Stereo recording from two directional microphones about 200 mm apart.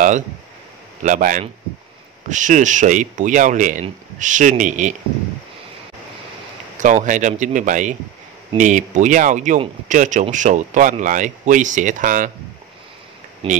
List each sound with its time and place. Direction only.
1.0 s speech: 40° right (ahead or behind)
6.8 s speech: 40° right (ahead or behind)
13.4 s speech: 25° right (ahead or behind)